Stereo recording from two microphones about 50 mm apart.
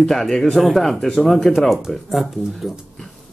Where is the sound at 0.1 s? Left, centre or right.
Centre.